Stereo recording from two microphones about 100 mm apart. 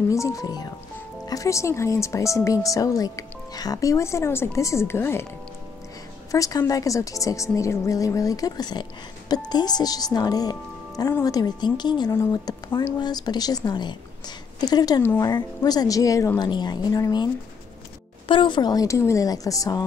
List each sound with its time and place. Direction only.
0.1 s speech: 35° left (ahead or behind)
6.3 s a woman's voice: 35° left (ahead or behind)
12.1 s a woman's voice: 30° left (ahead or behind)
12.4 s speech: 40° left (ahead or behind)
16.3 s a woman's voice: 45° left (ahead or behind)
18.3 s speech: 50° left (ahead or behind); by 19.8 s 35° left (ahead or behind)